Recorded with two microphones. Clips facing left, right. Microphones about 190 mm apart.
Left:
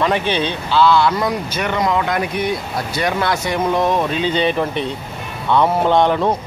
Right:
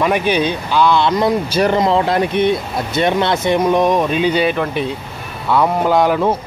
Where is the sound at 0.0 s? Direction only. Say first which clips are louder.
Right 3 dB; 10° right (ahead or behind).